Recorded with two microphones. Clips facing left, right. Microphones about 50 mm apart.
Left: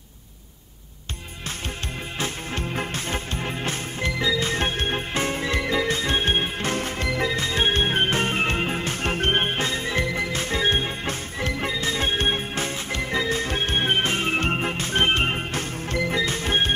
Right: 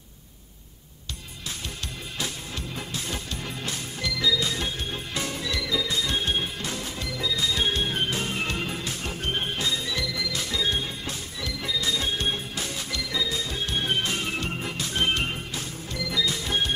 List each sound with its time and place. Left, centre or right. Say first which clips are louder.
2.1 s music: left 5 dB; left
5.1 s music: left 3 dB; left